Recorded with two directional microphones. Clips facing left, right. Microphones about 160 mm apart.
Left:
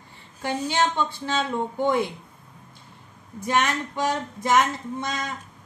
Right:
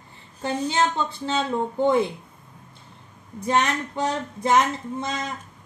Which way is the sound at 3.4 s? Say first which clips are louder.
Right 1 dB; 30° right (ahead or behind).